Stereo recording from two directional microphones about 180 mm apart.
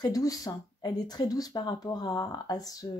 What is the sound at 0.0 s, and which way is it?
Speech, 20° left (ahead or behind).